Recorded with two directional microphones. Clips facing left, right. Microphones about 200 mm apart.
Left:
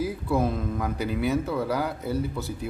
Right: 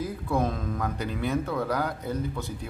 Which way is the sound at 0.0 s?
5° left (ahead or behind).